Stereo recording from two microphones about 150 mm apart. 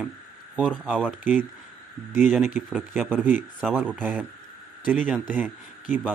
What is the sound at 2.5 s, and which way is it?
Speech, 10° right (ahead or behind).